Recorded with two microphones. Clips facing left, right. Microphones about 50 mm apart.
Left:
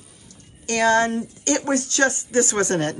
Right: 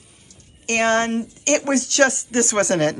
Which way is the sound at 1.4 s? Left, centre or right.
Right.